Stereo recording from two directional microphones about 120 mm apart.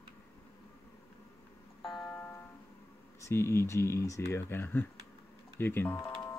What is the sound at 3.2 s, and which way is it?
Speech, 20° left (ahead or behind).